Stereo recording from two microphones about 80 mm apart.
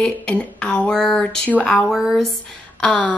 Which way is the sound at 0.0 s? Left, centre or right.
Centre.